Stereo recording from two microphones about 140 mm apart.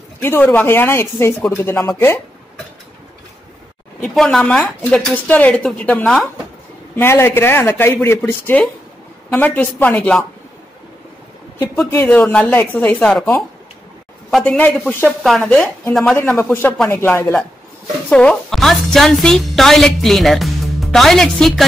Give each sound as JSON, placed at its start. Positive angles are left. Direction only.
{"t": 0.2, "sound": "speech", "side_deg": 15}
{"t": 4.0, "sound": "speech", "side_deg": 5}
{"t": 7.0, "sound": "speech", "side_deg": 15}
{"t": 11.9, "sound": "speech", "side_deg": 15}
{"t": 14.4, "sound": "a woman's voice", "side_deg": 10}
{"t": 16.2, "sound": "speech", "side_deg": 15}
{"t": 18.1, "sound": "a woman's voice", "side_deg": 5}